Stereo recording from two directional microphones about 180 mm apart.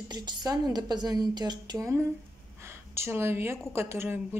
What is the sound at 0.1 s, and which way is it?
A woman's voice, 25° right (ahead or behind).